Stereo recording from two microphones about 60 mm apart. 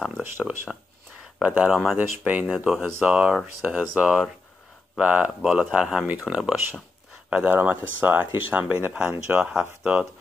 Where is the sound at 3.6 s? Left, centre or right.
Right.